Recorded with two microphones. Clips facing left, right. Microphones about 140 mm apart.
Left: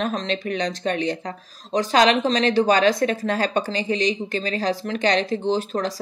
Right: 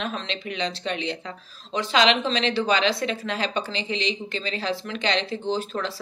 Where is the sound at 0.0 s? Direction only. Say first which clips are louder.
Left 6 dB; 40° left (ahead or behind).